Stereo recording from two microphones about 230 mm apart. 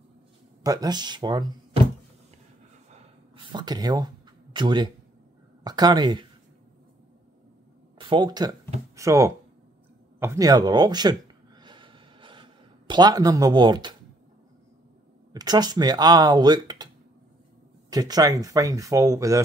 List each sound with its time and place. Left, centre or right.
0.7 s speech: centre
2.9 s a sound: right
5.6 s speech: centre
8.0 s speech: centre
11.6 s a sound: right
15.3 s speech: centre